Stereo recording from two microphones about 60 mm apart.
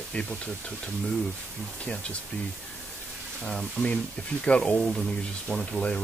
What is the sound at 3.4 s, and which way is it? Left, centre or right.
Speech, centre.